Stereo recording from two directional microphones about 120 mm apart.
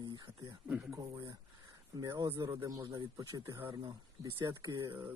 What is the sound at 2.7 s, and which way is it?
Speech, 30° right (ahead or behind).